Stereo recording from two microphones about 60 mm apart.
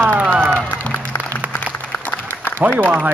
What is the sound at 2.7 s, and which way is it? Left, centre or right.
Speech, right.